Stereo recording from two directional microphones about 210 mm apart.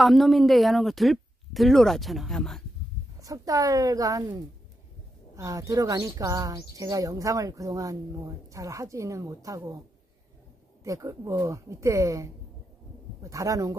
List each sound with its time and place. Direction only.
0.0 s speech: centre (ahead or behind)
3.2 s speech: 15° right (ahead or behind)
10.8 s speech: 15° right (ahead or behind)